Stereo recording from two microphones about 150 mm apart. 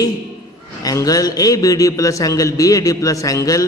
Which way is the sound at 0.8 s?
25° left (ahead or behind).